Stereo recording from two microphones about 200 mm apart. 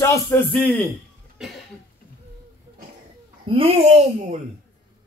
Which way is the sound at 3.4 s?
25° right (ahead or behind).